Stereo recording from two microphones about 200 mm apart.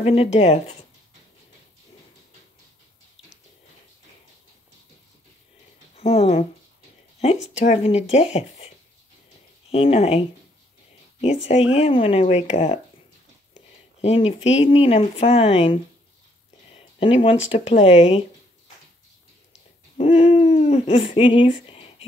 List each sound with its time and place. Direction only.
0.0 s speech: 30° left (ahead or behind)
5.9 s speech: 30° left (ahead or behind)
11.7 s speech: 30° left (ahead or behind)
14.0 s speech: 30° left (ahead or behind)
20.0 s speech: 30° left (ahead or behind)